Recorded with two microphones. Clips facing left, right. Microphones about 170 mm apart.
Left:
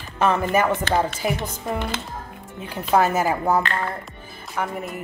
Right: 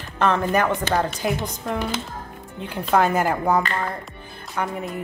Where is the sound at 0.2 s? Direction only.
5° left (ahead or behind).